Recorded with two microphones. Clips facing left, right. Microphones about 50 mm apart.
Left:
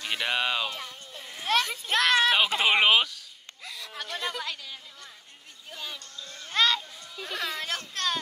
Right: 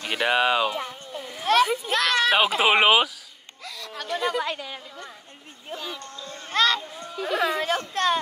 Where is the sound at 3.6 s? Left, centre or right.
Centre.